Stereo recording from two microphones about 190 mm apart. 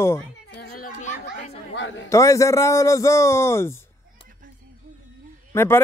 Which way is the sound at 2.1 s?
15° left (ahead or behind).